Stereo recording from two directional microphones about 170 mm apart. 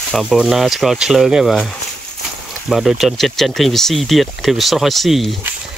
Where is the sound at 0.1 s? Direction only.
Centre (ahead or behind).